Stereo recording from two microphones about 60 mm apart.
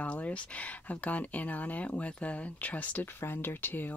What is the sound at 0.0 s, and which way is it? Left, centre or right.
Speech, left.